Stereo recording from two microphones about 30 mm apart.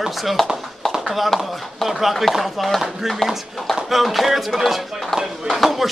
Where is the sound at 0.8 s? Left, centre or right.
Left.